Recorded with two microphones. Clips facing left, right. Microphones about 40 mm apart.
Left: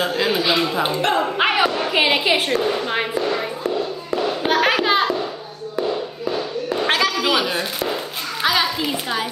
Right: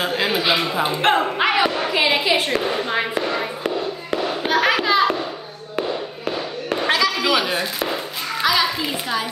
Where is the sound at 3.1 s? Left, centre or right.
Right.